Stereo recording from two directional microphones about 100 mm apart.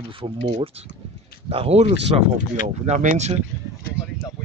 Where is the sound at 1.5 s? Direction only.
80° right.